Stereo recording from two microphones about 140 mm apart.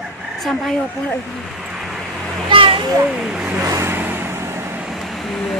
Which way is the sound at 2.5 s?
40° right (ahead or behind).